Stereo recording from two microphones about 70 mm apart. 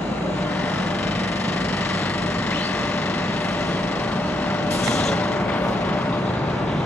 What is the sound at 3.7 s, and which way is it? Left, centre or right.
Vehicle, left.